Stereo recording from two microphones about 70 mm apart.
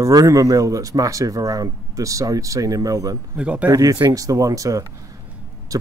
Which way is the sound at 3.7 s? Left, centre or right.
Right.